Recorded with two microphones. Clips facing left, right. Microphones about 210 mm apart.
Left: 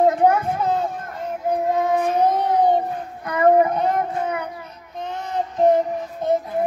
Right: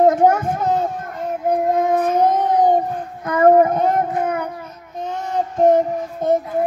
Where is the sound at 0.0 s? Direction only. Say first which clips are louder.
Right 3 dB; 45° right (ahead or behind).